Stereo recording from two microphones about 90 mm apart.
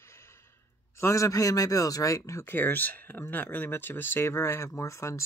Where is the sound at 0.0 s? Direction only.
30° left (ahead or behind).